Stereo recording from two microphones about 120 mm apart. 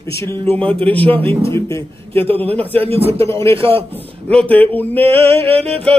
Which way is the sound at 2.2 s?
55° right (ahead or behind).